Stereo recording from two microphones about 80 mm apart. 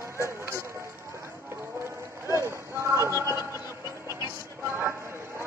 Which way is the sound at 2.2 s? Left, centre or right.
Right.